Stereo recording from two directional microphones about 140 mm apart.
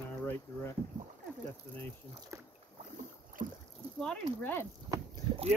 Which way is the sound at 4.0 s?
10° left (ahead or behind).